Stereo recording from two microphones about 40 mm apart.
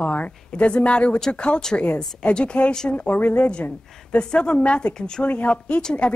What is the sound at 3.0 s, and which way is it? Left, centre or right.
Speech, left.